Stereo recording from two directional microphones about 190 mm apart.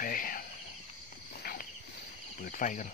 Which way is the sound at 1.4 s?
50° left (ahead or behind).